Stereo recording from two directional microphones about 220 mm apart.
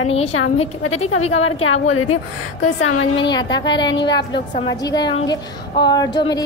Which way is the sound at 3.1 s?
20° left (ahead or behind).